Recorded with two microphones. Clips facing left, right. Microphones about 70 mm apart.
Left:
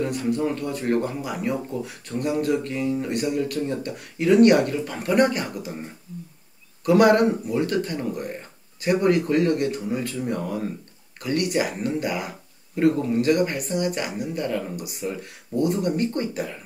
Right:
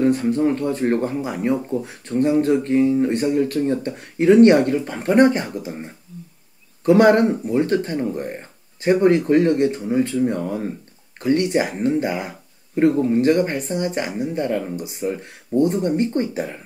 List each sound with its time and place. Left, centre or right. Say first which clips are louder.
0.0 s speech: right 6 dB; right
6.8 s speech: right 3 dB; right